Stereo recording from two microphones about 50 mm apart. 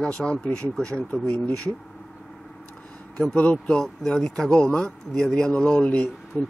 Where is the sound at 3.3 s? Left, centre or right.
Left.